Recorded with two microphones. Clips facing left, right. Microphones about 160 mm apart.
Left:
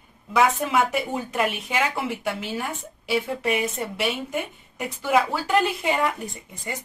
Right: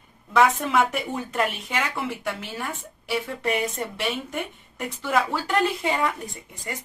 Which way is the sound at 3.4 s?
5° left (ahead or behind).